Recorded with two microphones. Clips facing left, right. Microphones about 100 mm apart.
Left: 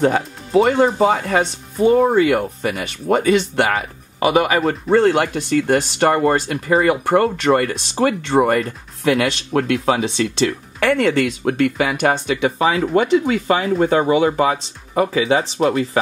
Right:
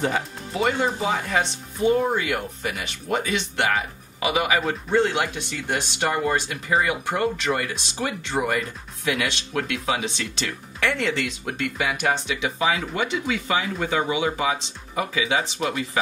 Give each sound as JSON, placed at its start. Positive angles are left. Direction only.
{"t": 0.0, "sound": "speech", "side_deg": 55}